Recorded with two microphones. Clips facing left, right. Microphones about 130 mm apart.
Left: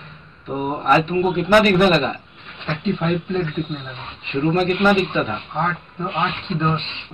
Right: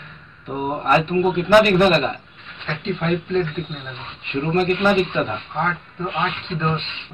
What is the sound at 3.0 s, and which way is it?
A man's voice, centre (ahead or behind).